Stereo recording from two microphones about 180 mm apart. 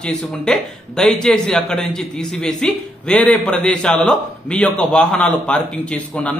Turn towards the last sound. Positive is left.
turn(degrees=5)  # may be behind; listen again after turning